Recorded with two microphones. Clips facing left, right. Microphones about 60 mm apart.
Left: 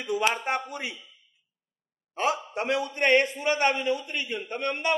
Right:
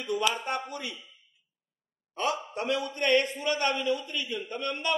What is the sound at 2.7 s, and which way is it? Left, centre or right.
A man's voice, left.